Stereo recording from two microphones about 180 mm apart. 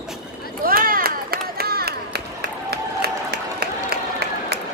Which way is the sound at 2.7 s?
65° right (ahead or behind).